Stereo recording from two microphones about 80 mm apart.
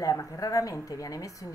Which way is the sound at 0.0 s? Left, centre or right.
Left.